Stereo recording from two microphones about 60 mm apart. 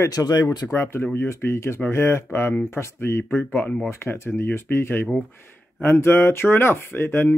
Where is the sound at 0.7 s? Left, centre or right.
Left.